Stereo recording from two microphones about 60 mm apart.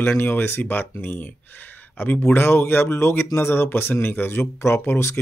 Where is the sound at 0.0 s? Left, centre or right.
Left.